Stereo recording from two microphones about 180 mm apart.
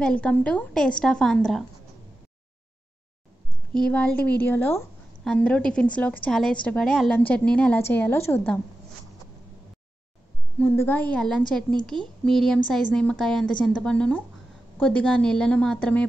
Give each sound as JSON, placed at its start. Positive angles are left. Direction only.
{"t": 0.0, "sound": "a woman's voice", "side_deg": 5}
{"t": 3.7, "sound": "a woman's voice", "side_deg": 5}
{"t": 10.6, "sound": "a woman's voice", "side_deg": 10}